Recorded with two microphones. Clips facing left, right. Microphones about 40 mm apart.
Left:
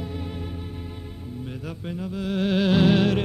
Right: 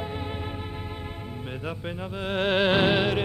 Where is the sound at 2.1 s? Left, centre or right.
Right.